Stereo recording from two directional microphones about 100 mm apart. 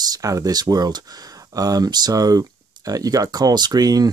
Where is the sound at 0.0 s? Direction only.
40° right (ahead or behind).